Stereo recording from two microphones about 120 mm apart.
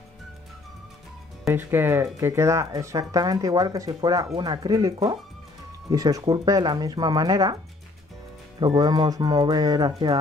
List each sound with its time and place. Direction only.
1.5 s speech: 15° right (ahead or behind)
8.5 s speech: 35° right (ahead or behind)